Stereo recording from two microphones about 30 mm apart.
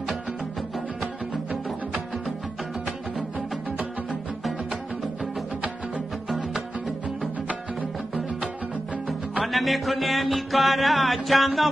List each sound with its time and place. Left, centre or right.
3.3 s music: right
9.4 s music: centre